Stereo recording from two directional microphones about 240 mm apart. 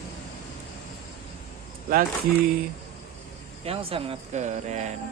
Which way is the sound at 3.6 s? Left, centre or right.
Right.